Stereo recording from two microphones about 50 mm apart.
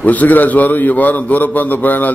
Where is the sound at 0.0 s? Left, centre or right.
Left.